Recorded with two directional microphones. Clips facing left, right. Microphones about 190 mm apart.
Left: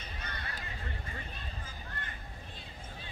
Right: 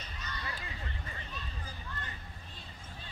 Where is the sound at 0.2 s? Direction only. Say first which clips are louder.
Right 1 dB; 55° left (ahead or behind).